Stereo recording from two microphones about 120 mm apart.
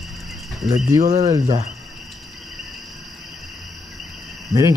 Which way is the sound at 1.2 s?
30° right (ahead or behind).